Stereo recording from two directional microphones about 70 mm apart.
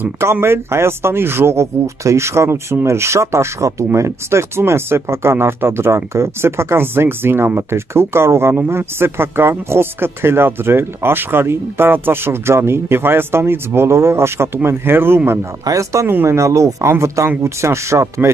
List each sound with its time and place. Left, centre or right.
0.2 s speech: right
15.6 s speech: right